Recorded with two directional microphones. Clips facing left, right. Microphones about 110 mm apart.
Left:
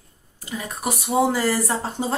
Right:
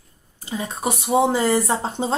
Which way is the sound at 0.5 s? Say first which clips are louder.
Right 3 dB; 25° right (ahead or behind).